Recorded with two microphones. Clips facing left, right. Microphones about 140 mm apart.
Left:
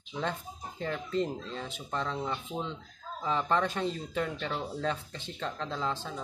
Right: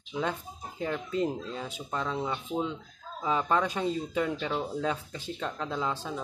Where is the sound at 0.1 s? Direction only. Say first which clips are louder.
Right 2 dB; 5° right (ahead or behind).